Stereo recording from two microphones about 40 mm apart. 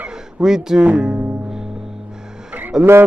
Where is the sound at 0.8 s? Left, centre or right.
Right.